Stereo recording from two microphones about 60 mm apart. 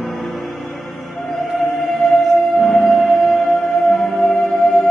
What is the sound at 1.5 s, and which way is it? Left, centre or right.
Music, centre.